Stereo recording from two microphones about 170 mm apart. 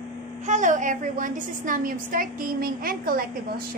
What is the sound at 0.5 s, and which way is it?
A woman's voice, 45° right (ahead or behind).